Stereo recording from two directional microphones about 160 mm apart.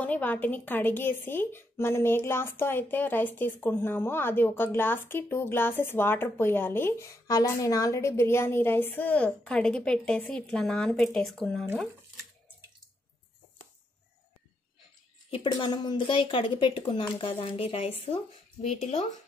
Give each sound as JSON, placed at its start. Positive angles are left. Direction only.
{"t": 0.0, "sound": "a woman's voice", "side_deg": 10}
{"t": 15.3, "sound": "speech", "side_deg": 30}